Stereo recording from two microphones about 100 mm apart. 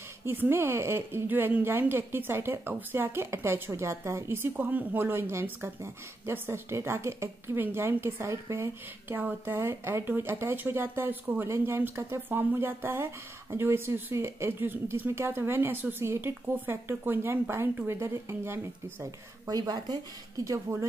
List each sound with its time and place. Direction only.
0.2 s speech: 25° right (ahead or behind)
19.4 s speech: 40° right (ahead or behind)